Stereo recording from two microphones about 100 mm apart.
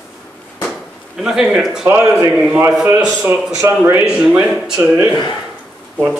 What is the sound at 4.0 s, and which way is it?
Speech, 5° right (ahead or behind).